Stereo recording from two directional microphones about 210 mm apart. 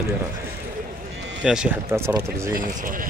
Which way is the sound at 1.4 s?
10° right (ahead or behind).